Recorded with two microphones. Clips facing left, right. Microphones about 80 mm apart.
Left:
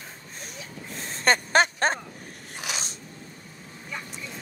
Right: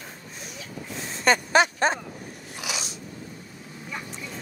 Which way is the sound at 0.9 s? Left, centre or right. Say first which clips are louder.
Right 1 dB; left.